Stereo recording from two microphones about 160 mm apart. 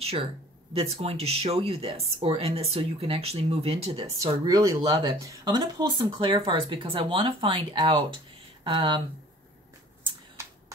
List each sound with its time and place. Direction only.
0.7 s speech: 40° right (ahead or behind)
4.2 s speech: 20° right (ahead or behind)
4.8 s speech: 35° right (ahead or behind)